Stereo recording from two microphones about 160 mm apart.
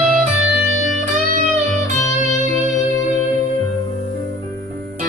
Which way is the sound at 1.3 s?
45° right (ahead or behind).